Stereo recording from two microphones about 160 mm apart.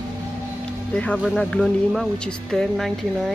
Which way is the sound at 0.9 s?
10° left (ahead or behind).